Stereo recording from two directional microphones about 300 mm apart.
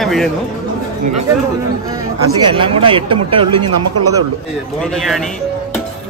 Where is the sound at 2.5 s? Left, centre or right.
Centre.